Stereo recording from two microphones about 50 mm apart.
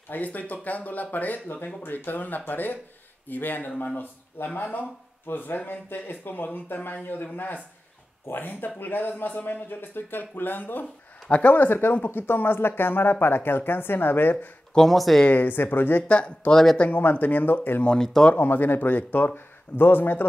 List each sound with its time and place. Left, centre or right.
0.1 s speech: left
14.8 s speech: centre
15.3 s speech: left
16.1 s speech: left
16.9 s speech: left
17.8 s speech: centre
18.4 s speech: left